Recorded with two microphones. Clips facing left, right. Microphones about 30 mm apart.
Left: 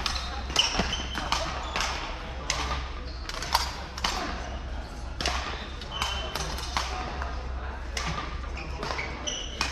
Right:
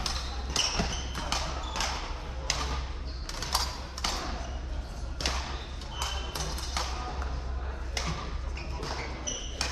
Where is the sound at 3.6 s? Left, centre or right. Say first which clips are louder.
Left 3 dB; centre.